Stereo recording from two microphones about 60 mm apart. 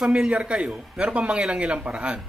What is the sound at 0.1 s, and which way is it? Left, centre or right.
A man's voice, centre.